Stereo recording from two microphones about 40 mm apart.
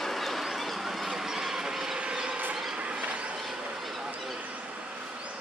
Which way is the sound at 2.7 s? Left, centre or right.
Right.